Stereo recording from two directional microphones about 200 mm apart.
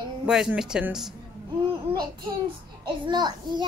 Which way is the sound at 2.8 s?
20° right (ahead or behind).